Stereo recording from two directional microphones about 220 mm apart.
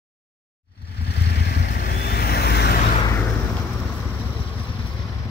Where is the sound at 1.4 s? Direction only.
45° left (ahead or behind).